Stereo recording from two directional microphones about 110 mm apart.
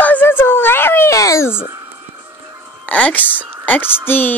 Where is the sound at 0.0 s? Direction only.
15° left (ahead or behind).